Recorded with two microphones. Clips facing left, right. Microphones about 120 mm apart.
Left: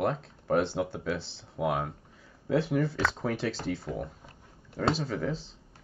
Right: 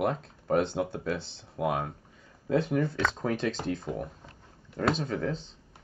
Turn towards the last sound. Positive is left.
turn(degrees=5)  # may be behind; listen again after turning